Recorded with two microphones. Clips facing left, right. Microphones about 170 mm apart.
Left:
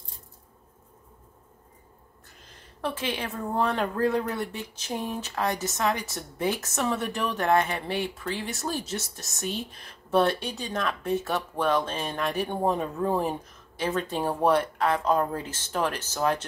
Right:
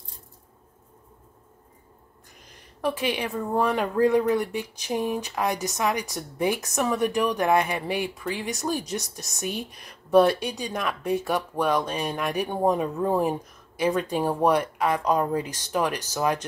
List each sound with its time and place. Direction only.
2.8 s speech: 15° right (ahead or behind)